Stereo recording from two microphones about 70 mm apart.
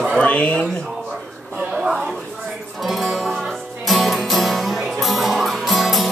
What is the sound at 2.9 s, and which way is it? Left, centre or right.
Music, centre.